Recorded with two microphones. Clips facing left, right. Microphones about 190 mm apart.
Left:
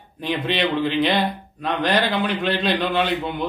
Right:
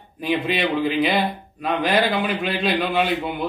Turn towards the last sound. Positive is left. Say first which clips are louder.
# even
turn(degrees=-5)  # may be behind; listen again after turning